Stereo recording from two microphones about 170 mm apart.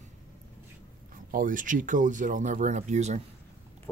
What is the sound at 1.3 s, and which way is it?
Speech, 50° right (ahead or behind).